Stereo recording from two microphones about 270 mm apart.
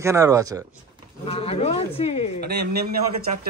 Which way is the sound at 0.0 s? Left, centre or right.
Centre.